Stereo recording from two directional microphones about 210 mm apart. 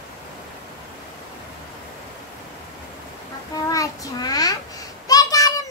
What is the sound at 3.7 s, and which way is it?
Child singing, 15° left (ahead or behind).